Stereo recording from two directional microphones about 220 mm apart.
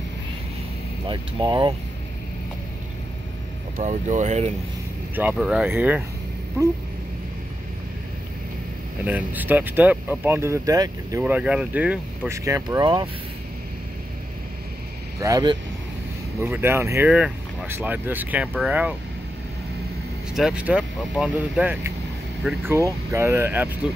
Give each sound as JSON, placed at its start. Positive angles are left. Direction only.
{"t": 1.0, "sound": "speech", "side_deg": -20}
{"t": 3.7, "sound": "speech", "side_deg": -35}
{"t": 5.1, "sound": "speech", "side_deg": -5}
{"t": 9.0, "sound": "speech", "side_deg": -5}
{"t": 15.1, "sound": "speech", "side_deg": -15}
{"t": 20.3, "sound": "speech", "side_deg": -5}